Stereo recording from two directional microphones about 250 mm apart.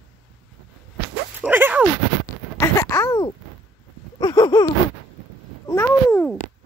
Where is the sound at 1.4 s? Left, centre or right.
Centre.